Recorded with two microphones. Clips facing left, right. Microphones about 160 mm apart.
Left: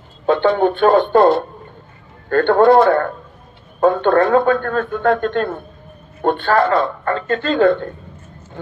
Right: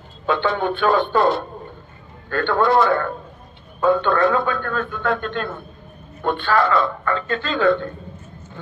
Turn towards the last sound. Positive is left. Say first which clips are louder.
# left 4 dB
turn(degrees=50)  # may be behind; listen again after turning